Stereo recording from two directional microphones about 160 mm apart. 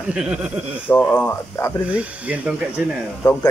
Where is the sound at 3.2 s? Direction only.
25° left (ahead or behind).